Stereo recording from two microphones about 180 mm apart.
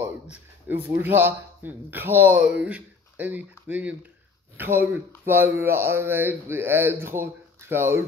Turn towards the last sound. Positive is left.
turn(degrees=-15)  # may be behind; listen again after turning